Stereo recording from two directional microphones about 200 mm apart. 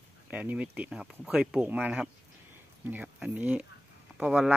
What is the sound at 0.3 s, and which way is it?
Speech, 5° right (ahead or behind).